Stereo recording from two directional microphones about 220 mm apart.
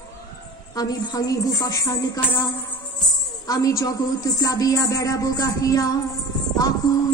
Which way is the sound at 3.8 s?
15° left (ahead or behind).